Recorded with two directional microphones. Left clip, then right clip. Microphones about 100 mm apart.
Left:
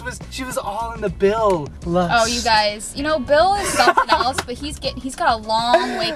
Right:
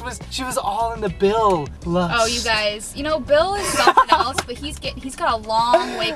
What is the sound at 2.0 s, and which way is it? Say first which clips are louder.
Speech: left 3 dB; 20° left (ahead or behind).